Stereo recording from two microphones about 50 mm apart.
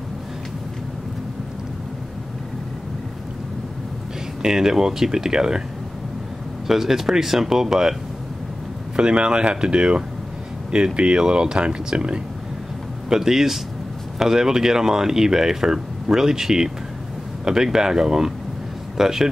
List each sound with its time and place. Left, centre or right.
4.4 s speech: centre
6.7 s speech: centre
8.9 s speech: centre
13.1 s speech: centre